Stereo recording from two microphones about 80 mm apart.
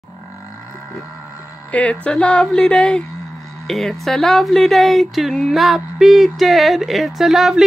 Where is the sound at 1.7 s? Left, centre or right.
Centre.